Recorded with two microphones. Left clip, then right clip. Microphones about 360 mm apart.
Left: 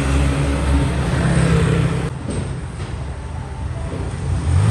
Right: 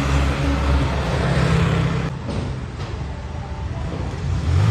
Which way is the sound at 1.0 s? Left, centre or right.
Centre.